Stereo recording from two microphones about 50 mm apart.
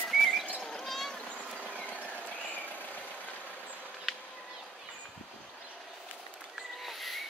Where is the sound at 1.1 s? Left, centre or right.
Centre.